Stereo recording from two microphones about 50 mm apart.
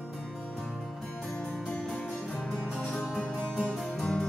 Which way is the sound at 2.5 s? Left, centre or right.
Centre.